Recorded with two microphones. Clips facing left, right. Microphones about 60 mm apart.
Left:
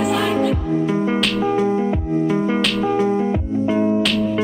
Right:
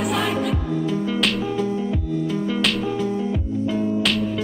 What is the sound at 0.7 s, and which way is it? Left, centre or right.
Music, left.